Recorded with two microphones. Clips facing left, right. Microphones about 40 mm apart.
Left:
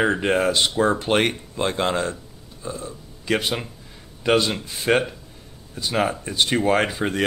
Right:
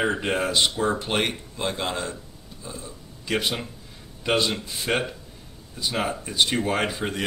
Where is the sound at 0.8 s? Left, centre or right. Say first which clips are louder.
Left 5 dB; left.